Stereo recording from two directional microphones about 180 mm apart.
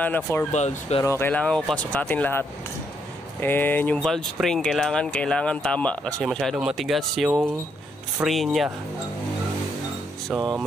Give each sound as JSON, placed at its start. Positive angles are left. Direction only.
{"t": 0.0, "sound": "speech", "side_deg": 10}
{"t": 0.5, "sound": "speech", "side_deg": 40}
{"t": 1.0, "sound": "speech", "side_deg": 15}
{"t": 10.3, "sound": "speech", "side_deg": 0}